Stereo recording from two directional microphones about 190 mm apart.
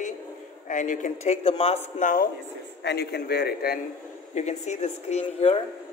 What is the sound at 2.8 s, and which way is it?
A man's voice, 60° left (ahead or behind).